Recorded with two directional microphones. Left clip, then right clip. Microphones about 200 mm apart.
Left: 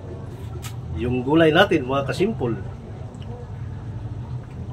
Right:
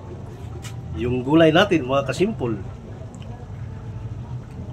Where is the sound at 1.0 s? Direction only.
15° right (ahead or behind).